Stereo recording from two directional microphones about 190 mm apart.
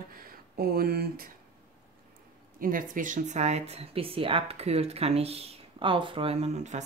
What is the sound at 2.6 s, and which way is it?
Speech, 45° right (ahead or behind).